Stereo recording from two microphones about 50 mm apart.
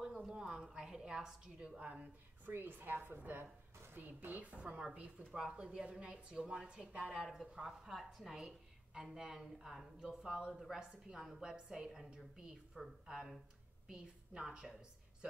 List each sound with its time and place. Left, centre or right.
0.0 s a sound: centre
0.7 s a woman's voice: centre
2.4 s a woman's voice: right; by 7.2 s centre
7.6 s a woman's voice: centre